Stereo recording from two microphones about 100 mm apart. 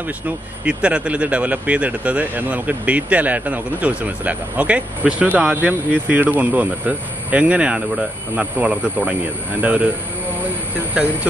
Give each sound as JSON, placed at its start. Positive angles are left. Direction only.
{"t": 0.7, "sound": "speech", "side_deg": -10}
{"t": 11.0, "sound": "speech", "side_deg": -10}